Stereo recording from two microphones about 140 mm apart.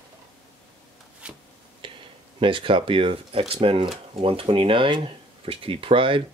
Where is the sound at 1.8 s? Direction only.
35° right (ahead or behind).